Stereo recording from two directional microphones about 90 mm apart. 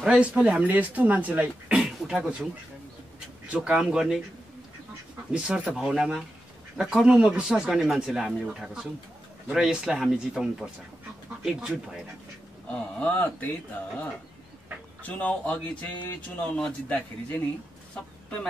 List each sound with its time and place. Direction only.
0.0 s speech: 10° right (ahead or behind)
3.4 s speech: 10° right (ahead or behind)
5.3 s speech: 10° right (ahead or behind)
12.6 s speech: 15° left (ahead or behind)
15.0 s speech: 15° left (ahead or behind)